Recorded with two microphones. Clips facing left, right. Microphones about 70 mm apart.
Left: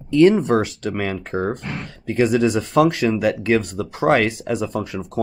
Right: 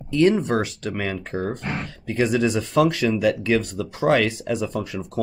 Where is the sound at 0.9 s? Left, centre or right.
Left.